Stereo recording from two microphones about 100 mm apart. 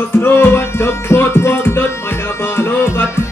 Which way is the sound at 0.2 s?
25° left (ahead or behind).